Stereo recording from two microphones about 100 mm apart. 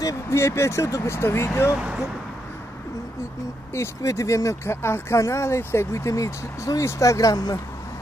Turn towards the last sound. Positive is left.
turn(degrees=40)  # may be behind; listen again after turning